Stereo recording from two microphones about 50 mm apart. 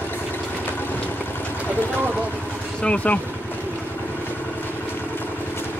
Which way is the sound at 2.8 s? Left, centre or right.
Left.